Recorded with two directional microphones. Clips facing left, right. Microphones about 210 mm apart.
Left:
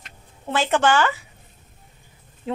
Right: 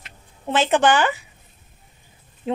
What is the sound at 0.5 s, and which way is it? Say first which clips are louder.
Speech: right 2 dB; 20° right (ahead or behind).